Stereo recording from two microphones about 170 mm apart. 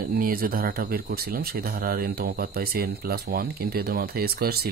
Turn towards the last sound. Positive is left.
turn(degrees=-65)  # may be behind; listen again after turning